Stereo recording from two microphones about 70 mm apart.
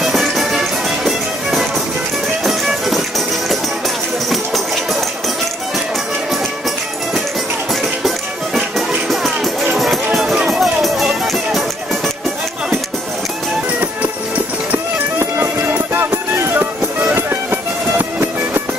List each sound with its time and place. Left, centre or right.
0.0 s music: centre
8.5 s music: centre
15.1 s music: right